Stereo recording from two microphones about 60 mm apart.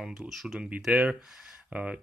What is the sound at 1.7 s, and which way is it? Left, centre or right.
Speech, centre.